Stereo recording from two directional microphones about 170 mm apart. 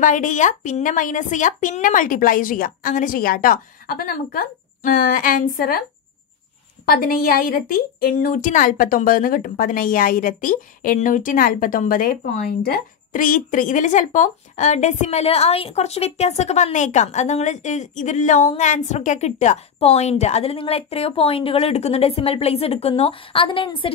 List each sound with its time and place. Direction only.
0.0 s a woman's voice: 50° left (ahead or behind)
6.9 s a woman's voice: 60° left (ahead or behind); by 23.9 s 30° left (ahead or behind)